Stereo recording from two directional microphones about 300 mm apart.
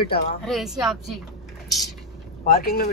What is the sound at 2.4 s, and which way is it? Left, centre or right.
Speech, left.